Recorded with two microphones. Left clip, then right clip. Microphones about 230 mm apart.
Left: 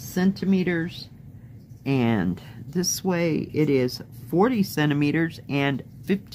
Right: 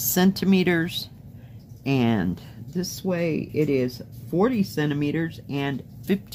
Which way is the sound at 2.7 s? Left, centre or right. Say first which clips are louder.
Left 2 dB; left.